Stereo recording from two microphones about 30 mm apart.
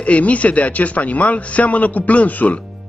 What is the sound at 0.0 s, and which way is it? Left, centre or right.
Speech, left.